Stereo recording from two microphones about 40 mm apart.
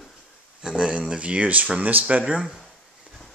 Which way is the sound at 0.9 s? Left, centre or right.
Right.